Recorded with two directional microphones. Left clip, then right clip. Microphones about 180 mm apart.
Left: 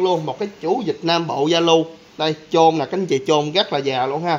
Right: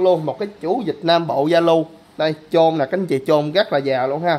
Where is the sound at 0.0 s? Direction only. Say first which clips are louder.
Right 3 dB; 35° right (ahead or behind).